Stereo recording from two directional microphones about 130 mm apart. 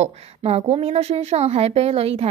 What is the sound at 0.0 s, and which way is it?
A woman's voice, 50° right (ahead or behind).